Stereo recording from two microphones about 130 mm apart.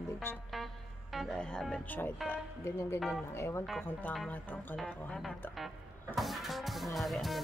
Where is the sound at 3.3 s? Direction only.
20° left (ahead or behind).